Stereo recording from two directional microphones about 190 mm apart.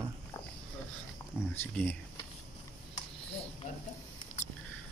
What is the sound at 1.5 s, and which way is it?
Speech, 10° left (ahead or behind).